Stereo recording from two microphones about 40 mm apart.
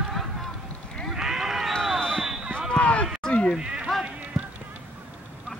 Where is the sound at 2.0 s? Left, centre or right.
Centre.